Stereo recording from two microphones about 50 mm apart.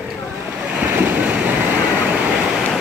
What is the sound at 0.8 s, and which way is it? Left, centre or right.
Waves, right.